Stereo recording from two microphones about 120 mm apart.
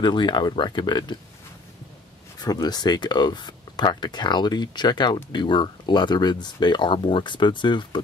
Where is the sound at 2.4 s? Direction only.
35° left (ahead or behind).